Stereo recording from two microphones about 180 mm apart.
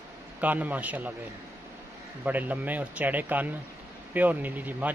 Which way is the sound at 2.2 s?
10° right (ahead or behind).